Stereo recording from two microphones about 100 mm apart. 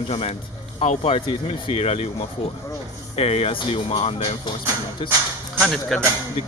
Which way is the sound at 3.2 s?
90° left.